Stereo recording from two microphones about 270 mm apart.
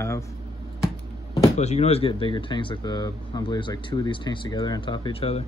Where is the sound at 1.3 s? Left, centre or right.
Centre.